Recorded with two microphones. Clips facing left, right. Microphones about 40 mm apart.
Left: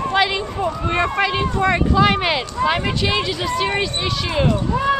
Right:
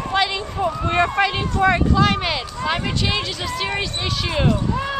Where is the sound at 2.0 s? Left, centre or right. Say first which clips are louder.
Left 3 dB; centre.